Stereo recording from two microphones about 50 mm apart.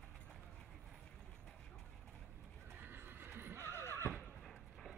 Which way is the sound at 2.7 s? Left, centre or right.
Right.